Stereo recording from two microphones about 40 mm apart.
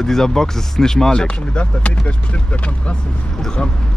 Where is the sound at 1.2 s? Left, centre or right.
Left.